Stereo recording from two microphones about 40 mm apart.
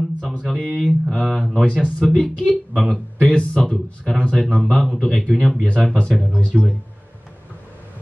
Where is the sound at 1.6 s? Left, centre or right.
Right.